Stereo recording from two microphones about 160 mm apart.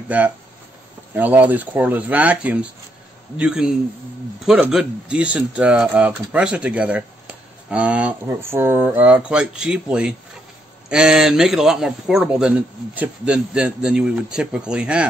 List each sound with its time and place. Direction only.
1.1 s a man's voice: 10° right (ahead or behind)